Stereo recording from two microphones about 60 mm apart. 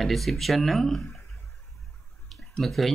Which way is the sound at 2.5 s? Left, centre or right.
Centre.